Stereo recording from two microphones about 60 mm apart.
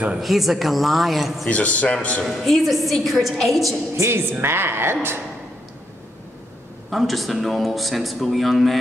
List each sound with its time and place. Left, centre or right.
0.2 s a man's voice: centre
1.5 s a man's voice: left
2.2 s a man's voice: centre
3.9 s a woman's voice: right
6.9 s a man's voice: centre